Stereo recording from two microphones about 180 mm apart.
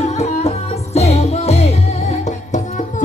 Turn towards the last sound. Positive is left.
turn(degrees=40)  # may be behind; listen again after turning